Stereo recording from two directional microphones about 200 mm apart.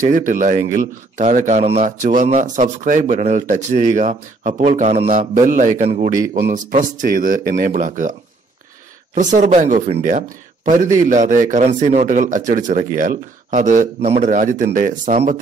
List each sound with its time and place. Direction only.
0.1 s speech: 40° right (ahead or behind)
9.1 s speech: 40° right (ahead or behind)